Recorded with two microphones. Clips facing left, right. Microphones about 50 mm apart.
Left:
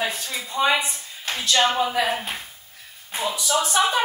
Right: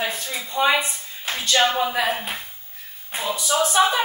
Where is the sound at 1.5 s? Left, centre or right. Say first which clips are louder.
Right 1 dB; centre.